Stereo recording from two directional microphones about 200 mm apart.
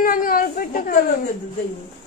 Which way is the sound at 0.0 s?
45° left (ahead or behind).